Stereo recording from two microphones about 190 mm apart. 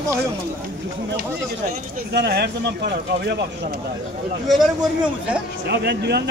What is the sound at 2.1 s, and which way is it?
Speech, 60° right (ahead or behind).